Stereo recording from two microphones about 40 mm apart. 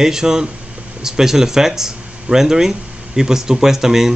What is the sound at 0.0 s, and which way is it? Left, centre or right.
Speech, centre.